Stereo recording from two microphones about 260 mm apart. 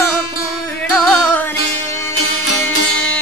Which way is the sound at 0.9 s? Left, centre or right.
Centre.